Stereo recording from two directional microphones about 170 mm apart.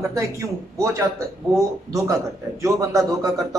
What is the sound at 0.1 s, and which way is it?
A man's voice, 15° right (ahead or behind).